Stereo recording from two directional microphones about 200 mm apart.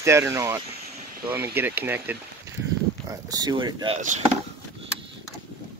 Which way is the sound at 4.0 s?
40° right (ahead or behind).